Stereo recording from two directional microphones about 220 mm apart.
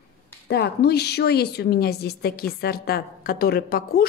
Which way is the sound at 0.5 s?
45° left (ahead or behind).